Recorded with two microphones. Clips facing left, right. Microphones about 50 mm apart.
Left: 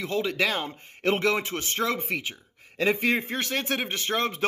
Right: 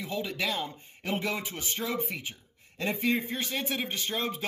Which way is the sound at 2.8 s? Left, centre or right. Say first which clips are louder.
Left 5 dB; left.